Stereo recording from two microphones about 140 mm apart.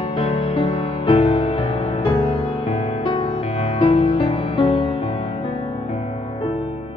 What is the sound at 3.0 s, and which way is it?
Music, 40° left (ahead or behind).